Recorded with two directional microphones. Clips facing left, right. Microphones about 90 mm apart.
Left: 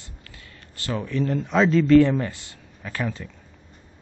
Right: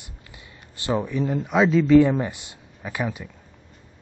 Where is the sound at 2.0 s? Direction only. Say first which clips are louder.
Even; 20° right (ahead or behind).